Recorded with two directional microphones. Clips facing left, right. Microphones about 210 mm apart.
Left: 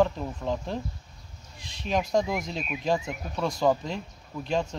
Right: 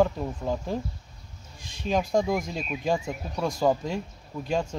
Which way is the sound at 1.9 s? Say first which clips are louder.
Right 2 dB; 35° right (ahead or behind).